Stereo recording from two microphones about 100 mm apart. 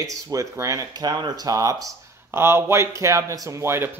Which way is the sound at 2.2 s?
25° right (ahead or behind).